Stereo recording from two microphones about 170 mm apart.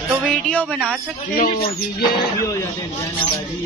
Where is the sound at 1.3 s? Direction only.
60° left (ahead or behind).